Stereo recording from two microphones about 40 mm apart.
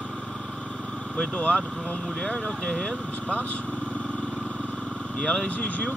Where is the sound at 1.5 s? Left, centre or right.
Left.